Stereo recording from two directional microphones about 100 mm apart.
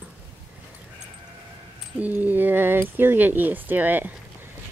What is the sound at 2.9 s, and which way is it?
Speech, 20° right (ahead or behind).